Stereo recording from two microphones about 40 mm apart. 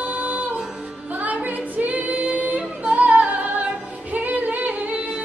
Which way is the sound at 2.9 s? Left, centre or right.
Right.